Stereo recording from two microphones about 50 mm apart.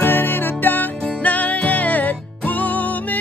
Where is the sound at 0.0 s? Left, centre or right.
Left.